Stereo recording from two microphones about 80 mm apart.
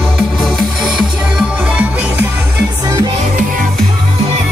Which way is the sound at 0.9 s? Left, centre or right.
Centre.